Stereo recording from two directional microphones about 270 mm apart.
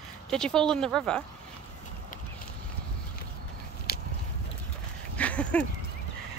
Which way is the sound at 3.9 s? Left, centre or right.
Left.